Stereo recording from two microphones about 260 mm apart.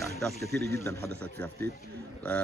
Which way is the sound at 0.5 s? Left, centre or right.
Right.